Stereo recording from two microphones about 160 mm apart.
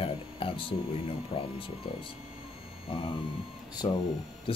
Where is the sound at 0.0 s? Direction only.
35° left (ahead or behind).